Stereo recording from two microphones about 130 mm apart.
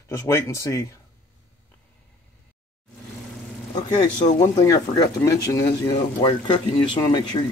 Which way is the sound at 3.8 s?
35° left (ahead or behind).